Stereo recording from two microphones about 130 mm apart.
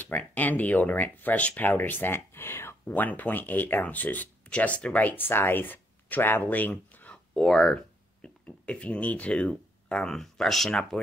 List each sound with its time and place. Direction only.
0.0 s speech: 10° left (ahead or behind)